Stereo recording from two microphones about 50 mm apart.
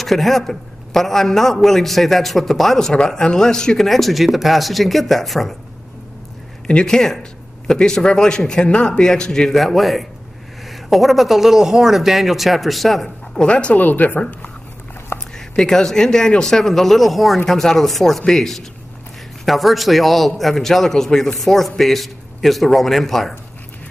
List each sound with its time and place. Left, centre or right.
0.0 s a man's voice: centre
6.7 s a man's voice: centre
13.3 s speech: centre
13.7 s speech: left
15.5 s a man's voice: centre